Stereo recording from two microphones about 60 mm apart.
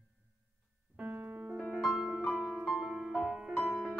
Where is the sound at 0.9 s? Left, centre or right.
Right.